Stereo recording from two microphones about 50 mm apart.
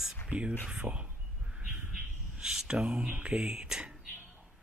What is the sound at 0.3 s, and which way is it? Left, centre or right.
Speech, right.